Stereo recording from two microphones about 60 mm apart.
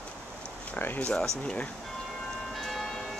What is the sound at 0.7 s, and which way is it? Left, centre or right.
Speech, left.